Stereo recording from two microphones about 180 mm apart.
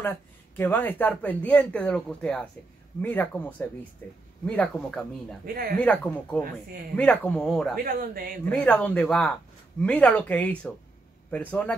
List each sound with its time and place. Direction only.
0.0 s speech: 10° left (ahead or behind)
5.4 s speech: 55° right (ahead or behind)
5.8 s speech: 5° left (ahead or behind)
7.7 s speech: 55° right (ahead or behind)
8.5 s speech: 5° left (ahead or behind)